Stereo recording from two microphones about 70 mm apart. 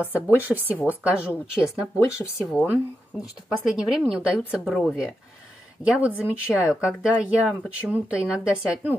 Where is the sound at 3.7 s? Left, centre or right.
Centre.